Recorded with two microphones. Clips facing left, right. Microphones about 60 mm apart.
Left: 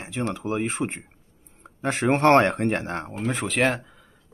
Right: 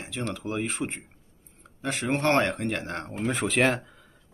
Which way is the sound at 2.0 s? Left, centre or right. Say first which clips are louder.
Left 6 dB; left.